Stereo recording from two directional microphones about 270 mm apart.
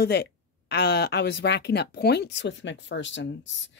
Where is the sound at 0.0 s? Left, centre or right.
Left.